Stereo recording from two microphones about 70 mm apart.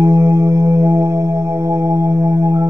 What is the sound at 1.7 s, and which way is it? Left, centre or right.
Music, right.